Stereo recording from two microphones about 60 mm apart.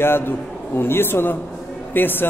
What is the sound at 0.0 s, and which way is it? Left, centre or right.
A man's voice, left.